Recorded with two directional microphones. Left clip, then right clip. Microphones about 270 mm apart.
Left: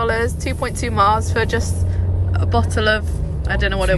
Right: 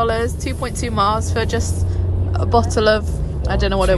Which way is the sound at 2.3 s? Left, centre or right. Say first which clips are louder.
Right 4 dB; centre.